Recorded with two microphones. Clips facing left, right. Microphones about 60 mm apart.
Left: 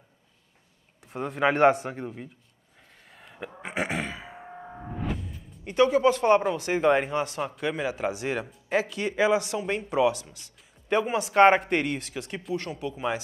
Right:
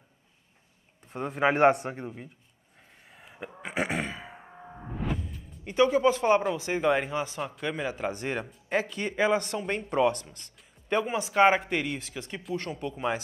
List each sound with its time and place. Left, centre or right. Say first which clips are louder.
1.0 s speech: left 1 dB; centre
3.1 s a sound: left 2 dB; centre
5.9 s speech: left 2 dB; right
6.2 s speech: left 2 dB; centre
11.3 s speech: left 4 dB; centre